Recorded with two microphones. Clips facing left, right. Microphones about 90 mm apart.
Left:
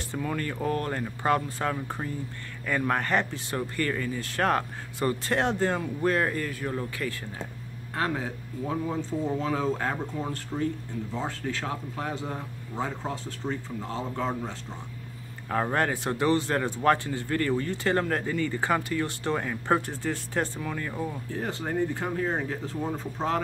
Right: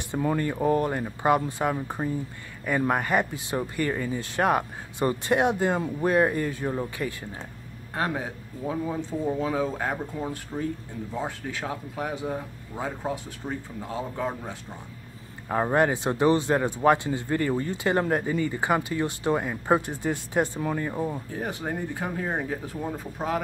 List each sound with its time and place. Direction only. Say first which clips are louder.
0.2 s a man's voice: right 6 dB; 25° right (ahead or behind)